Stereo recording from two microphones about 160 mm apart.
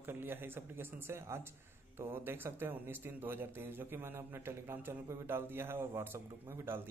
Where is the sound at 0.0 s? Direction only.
15° right (ahead or behind).